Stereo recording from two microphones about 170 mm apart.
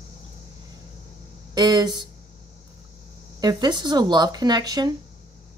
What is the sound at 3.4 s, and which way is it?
Speech, 25° right (ahead or behind).